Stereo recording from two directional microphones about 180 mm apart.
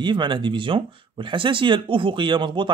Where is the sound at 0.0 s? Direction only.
25° right (ahead or behind).